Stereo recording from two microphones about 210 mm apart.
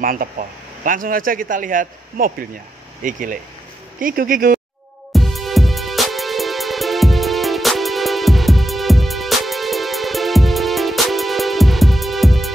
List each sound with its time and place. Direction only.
0.0 s speech: 40° right (ahead or behind)
5.1 s music: centre (ahead or behind)